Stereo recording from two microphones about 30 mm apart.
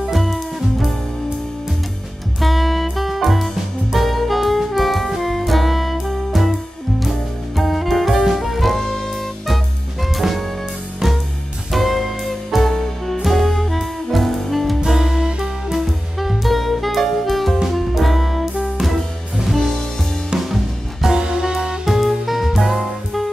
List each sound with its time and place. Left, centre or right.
0.1 s music: centre
2.4 s music: centre
3.9 s saxophone: centre
7.0 s music: centre
8.7 s saxophone: centre
10.1 s music: centre
11.7 s music: centre
15.0 s music: centre
15.8 s music: centre
20.3 s music: centre
21.1 s music: right
21.8 s music: centre